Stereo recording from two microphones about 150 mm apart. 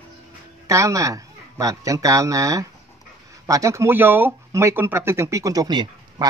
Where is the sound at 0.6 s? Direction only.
20° right (ahead or behind).